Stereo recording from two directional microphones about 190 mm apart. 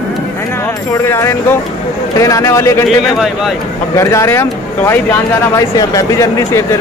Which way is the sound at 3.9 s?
15° left (ahead or behind).